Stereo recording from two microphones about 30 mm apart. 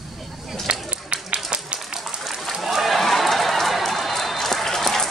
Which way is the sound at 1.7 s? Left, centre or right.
Right.